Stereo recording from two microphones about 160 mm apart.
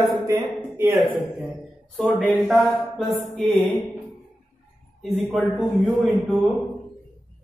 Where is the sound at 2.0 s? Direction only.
Centre (ahead or behind).